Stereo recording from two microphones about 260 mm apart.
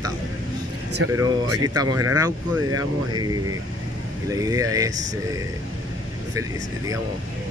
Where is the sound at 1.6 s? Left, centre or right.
Centre.